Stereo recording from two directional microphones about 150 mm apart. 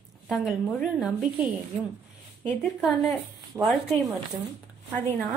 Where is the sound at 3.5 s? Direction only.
15° right (ahead or behind).